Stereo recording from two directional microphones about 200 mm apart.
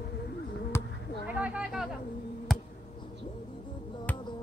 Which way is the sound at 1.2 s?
5° right (ahead or behind).